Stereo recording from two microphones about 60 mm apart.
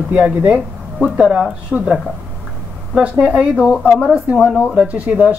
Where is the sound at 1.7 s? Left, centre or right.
Centre.